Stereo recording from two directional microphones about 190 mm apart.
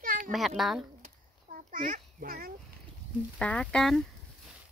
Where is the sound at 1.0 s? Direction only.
45° right (ahead or behind).